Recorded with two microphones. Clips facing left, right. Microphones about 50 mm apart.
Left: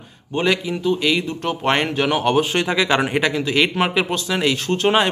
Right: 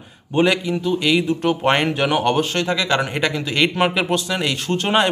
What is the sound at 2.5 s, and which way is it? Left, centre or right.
Speech, centre.